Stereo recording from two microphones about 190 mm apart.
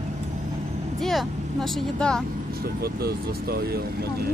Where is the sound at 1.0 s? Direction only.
Centre (ahead or behind).